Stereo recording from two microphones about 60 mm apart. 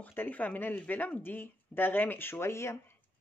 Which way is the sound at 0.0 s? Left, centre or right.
Left.